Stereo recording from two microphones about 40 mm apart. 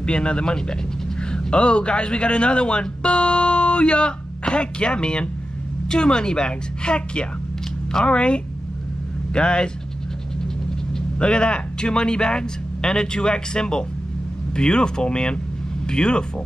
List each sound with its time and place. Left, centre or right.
0.0 s speech: left
11.1 s speech: left